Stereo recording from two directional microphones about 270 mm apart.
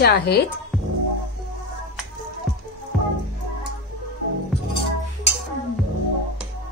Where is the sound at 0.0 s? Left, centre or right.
Left.